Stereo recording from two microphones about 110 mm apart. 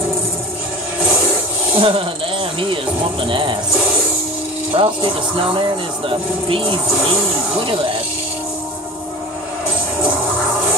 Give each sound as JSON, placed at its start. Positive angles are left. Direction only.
{"t": 1.8, "sound": "speech", "side_deg": -50}
{"t": 3.3, "sound": "speech", "side_deg": -50}
{"t": 4.7, "sound": "speech", "side_deg": -55}